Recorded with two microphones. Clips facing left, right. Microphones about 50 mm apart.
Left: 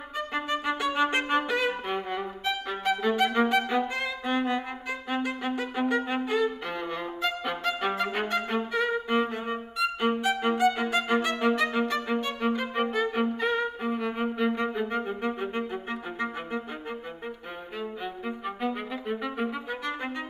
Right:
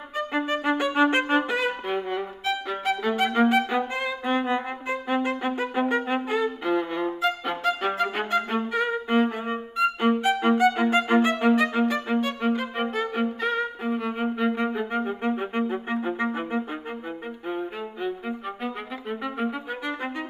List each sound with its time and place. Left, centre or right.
0.4 s music: centre
1.7 s violin: centre
3.4 s music: centre
18.0 s music: centre